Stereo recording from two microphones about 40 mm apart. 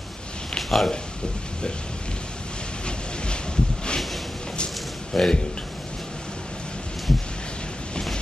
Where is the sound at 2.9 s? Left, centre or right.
Left.